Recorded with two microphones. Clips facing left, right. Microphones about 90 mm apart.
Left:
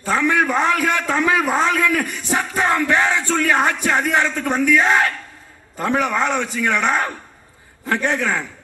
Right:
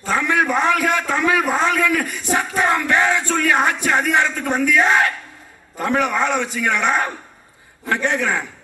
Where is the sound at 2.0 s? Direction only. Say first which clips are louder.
Right 1 dB; 15° right (ahead or behind).